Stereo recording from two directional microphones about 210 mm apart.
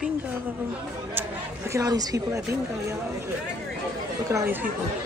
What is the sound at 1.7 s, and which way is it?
Speech, 15° right (ahead or behind).